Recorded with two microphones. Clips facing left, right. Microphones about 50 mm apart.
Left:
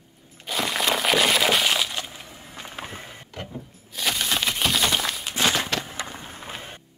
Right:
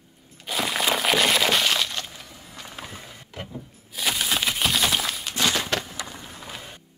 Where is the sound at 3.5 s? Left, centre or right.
Centre.